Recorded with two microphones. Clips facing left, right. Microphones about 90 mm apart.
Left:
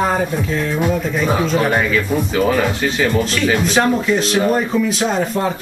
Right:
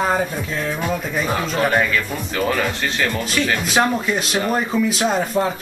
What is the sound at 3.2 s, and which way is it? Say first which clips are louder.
Speech: left 4 dB; 5° right (ahead or behind).